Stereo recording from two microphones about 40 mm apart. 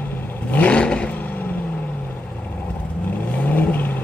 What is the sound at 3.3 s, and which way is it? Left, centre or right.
Vehicle, left.